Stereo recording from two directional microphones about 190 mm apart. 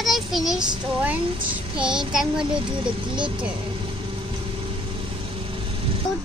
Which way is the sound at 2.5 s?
25° right (ahead or behind).